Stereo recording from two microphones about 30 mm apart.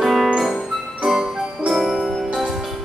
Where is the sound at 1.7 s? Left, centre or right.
Centre.